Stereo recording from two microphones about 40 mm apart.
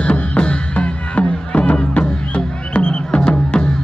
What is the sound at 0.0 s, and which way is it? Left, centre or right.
Music, left.